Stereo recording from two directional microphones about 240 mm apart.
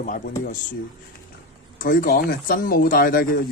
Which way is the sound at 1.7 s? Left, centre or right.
Left.